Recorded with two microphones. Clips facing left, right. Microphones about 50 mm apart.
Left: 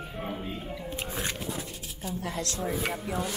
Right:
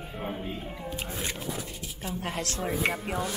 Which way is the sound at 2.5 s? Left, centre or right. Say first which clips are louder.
Right 4 dB; right.